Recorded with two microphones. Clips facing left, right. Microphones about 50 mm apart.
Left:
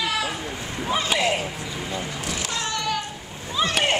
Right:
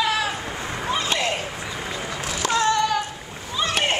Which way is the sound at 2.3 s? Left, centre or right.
Right.